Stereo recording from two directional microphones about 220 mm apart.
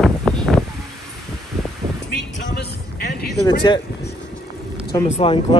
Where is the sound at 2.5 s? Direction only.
50° left (ahead or behind).